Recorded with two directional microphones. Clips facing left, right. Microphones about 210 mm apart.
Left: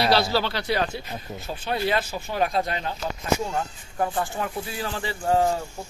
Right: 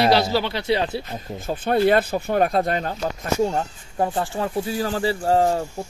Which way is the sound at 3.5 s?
30° right (ahead or behind).